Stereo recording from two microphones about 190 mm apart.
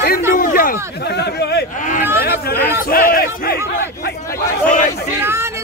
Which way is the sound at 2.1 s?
55° left (ahead or behind).